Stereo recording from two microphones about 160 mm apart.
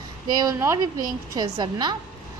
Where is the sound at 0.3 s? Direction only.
25° right (ahead or behind).